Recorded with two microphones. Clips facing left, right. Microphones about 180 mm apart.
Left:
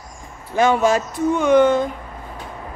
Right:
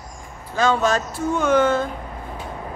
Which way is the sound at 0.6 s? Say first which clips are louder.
Left 3 dB; 15° left (ahead or behind).